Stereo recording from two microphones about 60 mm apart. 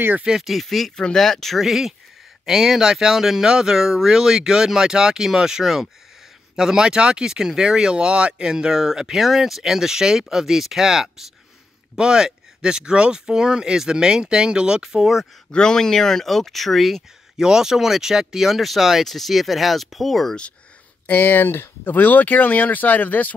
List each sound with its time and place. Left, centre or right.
0.2 s speech: centre
0.5 s speech: centre
15.5 s speech: centre
17.4 s speech: centre
21.1 s speech: left